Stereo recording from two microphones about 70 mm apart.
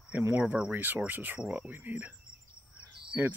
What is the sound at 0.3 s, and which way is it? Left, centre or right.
Speech, right.